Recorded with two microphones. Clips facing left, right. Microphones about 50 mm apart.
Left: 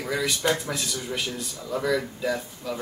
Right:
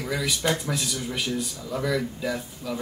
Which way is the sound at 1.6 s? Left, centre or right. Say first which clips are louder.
Left 3 dB; centre.